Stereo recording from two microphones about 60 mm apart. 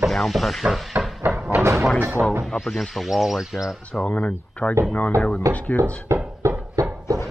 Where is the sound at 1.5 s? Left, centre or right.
Right.